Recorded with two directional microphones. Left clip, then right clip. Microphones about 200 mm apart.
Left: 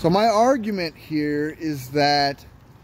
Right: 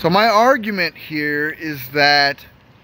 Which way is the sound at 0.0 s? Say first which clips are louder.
Right 4 dB; centre (ahead or behind).